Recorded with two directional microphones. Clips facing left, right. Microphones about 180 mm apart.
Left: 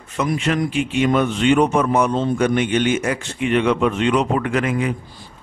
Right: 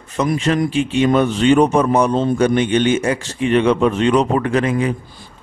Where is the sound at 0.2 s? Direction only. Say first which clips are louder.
Right 3 dB; 35° right (ahead or behind).